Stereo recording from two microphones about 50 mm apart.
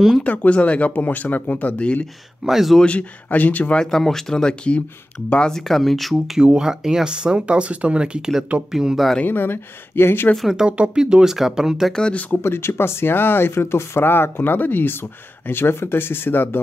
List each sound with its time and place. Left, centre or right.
0.2 s speech: left
2.4 s speech: centre
2.8 s speech: left
3.7 s speech: centre
5.5 s speech: centre; by 8.2 s right
8.7 s speech: centre
9.2 s speech: left
10.5 s speech: right
11.9 s speech: centre
12.4 s speech: left